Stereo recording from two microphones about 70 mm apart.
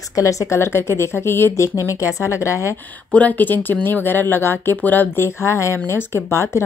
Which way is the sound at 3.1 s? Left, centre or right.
Left.